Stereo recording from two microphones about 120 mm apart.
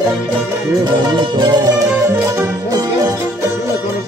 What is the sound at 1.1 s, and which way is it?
Music, 40° right (ahead or behind).